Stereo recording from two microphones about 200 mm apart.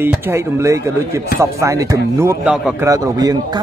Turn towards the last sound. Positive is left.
turn(degrees=-20)  # may be behind; listen again after turning